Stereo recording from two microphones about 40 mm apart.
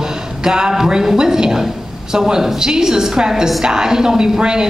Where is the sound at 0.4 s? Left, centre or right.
Centre.